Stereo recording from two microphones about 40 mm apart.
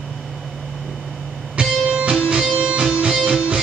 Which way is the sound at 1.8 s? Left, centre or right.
Right.